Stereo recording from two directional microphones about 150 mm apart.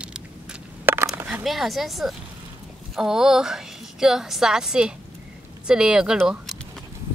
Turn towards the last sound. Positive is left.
turn(degrees=0)  # may be behind; listen again after turning